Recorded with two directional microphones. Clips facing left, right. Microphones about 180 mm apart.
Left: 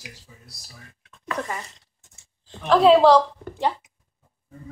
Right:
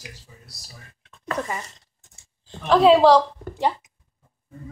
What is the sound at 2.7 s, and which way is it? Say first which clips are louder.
Speech: even; centre (ahead or behind).